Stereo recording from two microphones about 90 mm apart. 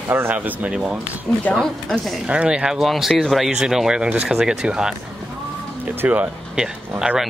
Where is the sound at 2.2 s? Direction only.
10° right (ahead or behind).